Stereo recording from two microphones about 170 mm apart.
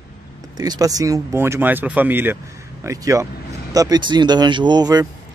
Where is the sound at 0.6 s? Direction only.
20° right (ahead or behind).